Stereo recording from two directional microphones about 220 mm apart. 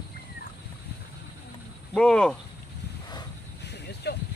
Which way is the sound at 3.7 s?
50° left (ahead or behind).